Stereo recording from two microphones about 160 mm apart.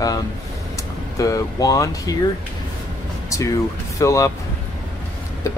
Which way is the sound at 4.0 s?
20° left (ahead or behind).